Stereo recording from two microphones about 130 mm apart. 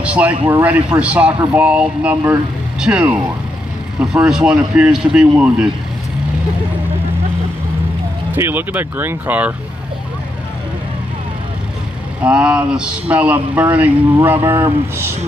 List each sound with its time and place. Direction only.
0.0 s a sound: 10° right (ahead or behind)
0.5 s speech: 15° right (ahead or behind)
8.4 s speech: 15° right (ahead or behind)
12.2 s speech: 10° right (ahead or behind)